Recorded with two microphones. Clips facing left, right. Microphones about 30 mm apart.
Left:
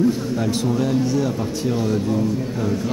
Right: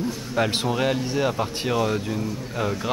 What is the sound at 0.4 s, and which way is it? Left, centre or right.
Speech, right.